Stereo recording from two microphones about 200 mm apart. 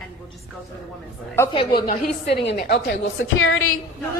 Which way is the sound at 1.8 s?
60° left (ahead or behind).